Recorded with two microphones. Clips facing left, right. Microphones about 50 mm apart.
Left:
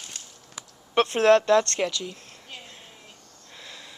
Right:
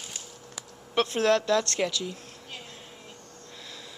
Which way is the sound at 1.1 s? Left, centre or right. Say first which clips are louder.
Left 6 dB; left.